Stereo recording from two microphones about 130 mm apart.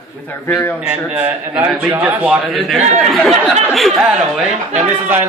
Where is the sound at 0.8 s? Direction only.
10° right (ahead or behind).